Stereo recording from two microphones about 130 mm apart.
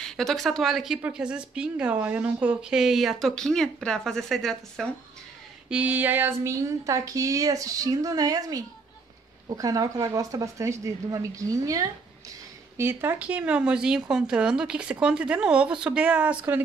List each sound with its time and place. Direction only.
0.0 s a woman's voice: centre (ahead or behind)
5.7 s speech: 10° right (ahead or behind)